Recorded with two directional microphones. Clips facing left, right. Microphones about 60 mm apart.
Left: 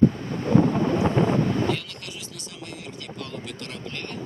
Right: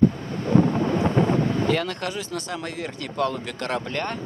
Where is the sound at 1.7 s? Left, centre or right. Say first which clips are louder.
Right 8 dB; right.